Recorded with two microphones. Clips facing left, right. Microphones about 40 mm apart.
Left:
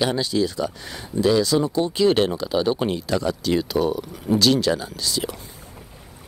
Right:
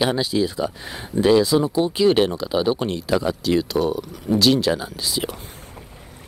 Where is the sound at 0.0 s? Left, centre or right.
Centre.